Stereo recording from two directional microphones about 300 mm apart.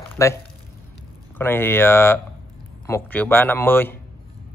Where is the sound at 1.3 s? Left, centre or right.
Centre.